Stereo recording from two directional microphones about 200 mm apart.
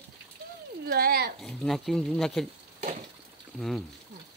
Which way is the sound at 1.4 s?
Centre (ahead or behind).